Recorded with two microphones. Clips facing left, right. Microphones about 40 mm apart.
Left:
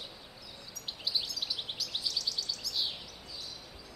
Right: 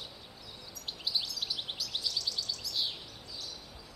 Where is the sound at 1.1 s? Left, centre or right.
Centre.